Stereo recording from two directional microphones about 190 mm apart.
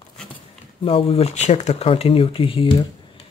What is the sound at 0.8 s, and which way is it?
Speech, 30° left (ahead or behind).